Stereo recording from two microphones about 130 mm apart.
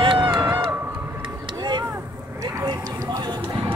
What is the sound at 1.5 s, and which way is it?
Vehicle, 35° right (ahead or behind).